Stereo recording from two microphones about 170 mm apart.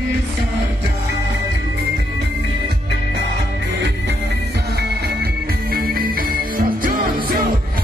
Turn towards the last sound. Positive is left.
turn(degrees=-60)  # may be behind; listen again after turning